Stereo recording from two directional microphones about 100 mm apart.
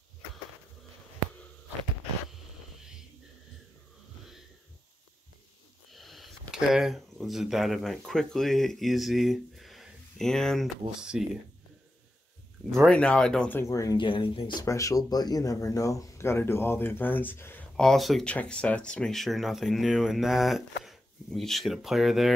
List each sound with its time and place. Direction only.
2.8 s a sound: 5° right (ahead or behind)
5.9 s speech: centre (ahead or behind)
11.0 s speech: 10° right (ahead or behind)
12.8 s speech: 10° left (ahead or behind)
13.7 s speech: 35° left (ahead or behind)
13.9 s speech: 55° left (ahead or behind)
14.4 s speech: 35° left (ahead or behind)
17.7 s speech: centre (ahead or behind)
18.2 s speech: 10° left (ahead or behind)